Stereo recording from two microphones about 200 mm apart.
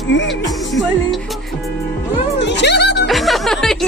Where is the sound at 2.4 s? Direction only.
60° left (ahead or behind).